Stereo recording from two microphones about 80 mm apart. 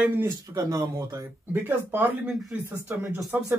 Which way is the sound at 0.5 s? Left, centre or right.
Right.